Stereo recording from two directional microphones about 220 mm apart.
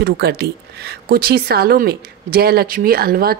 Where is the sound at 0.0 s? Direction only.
45° right (ahead or behind).